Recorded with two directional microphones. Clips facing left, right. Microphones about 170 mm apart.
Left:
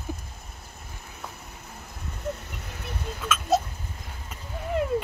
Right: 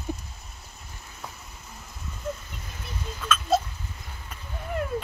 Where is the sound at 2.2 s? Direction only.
65° left (ahead or behind).